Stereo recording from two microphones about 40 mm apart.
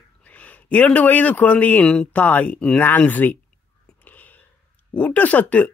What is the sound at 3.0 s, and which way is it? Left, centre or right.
Speech, left.